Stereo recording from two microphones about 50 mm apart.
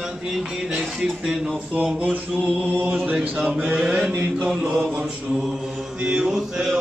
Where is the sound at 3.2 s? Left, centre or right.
Centre.